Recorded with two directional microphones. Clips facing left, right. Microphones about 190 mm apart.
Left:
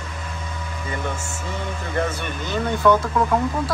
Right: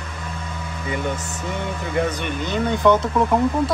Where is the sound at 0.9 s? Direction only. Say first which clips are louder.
Right 4 dB; 15° right (ahead or behind).